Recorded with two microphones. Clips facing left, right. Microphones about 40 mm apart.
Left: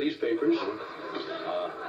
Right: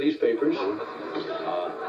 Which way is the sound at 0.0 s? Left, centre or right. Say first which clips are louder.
Right 4 dB; centre.